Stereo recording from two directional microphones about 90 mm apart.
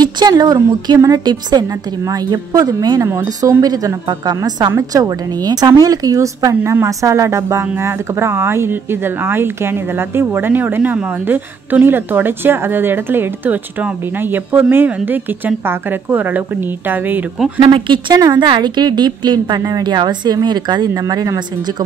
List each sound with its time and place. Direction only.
0.0 s a woman's voice: 50° right (ahead or behind); by 17.2 s 20° right (ahead or behind)
17.6 s speech: 65° right (ahead or behind)
18.2 s a woman's voice: 40° right (ahead or behind)
18.5 s a woman's voice: 55° right (ahead or behind)